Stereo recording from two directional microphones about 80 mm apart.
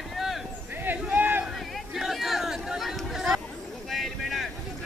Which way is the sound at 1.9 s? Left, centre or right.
Centre.